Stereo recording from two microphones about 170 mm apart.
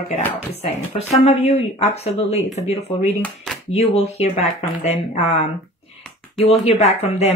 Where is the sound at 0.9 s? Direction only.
40° left (ahead or behind).